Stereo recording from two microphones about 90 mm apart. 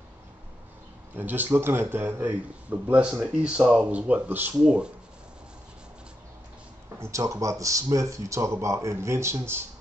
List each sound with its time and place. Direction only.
1.1 s a man's voice: 20° right (ahead or behind)
7.0 s speech: 35° right (ahead or behind)